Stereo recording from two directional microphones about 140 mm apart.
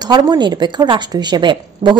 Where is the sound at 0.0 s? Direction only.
30° right (ahead or behind).